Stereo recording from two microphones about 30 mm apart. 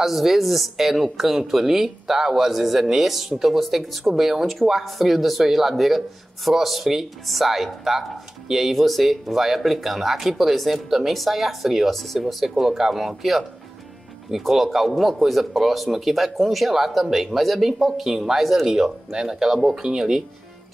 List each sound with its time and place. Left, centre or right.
0.0 s a woman's voice: centre
8.7 s speech: centre
11.9 s speech: centre
18.7 s a woman's voice: centre